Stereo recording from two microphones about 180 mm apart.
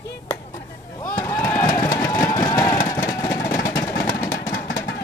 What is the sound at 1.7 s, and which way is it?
Vehicle, 15° left (ahead or behind).